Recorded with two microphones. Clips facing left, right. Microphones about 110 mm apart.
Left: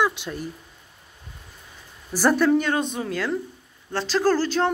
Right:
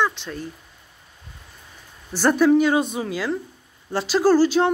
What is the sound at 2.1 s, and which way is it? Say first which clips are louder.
Speech: right 3 dB; centre (ahead or behind).